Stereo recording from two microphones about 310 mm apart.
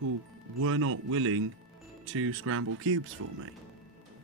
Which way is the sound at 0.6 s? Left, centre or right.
Right.